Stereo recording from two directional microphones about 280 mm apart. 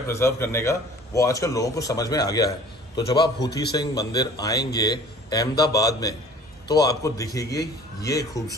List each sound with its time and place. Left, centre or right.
0.1 s a man's voice: centre